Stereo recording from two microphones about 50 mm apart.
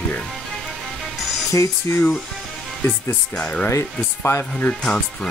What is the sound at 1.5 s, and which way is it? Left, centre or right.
Speech, left.